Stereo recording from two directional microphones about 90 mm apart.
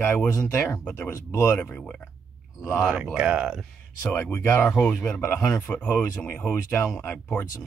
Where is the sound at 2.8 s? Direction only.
10° right (ahead or behind).